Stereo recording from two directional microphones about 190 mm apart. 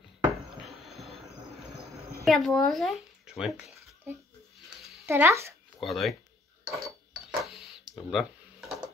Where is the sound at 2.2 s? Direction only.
Centre (ahead or behind).